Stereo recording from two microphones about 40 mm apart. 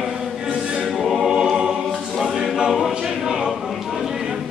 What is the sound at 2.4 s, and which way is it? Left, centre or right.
Choir, centre.